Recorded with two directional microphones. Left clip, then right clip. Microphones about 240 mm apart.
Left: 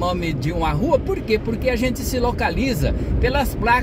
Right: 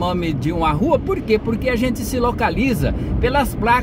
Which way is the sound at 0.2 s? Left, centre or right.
Centre.